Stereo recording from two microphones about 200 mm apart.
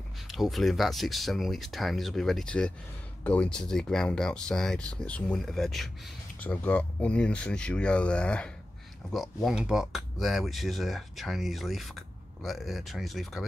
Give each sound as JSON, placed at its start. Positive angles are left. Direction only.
{"t": 0.3, "sound": "speech", "side_deg": 0}